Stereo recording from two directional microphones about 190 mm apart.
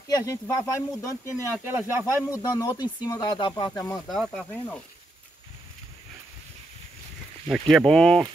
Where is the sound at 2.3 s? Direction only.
15° left (ahead or behind).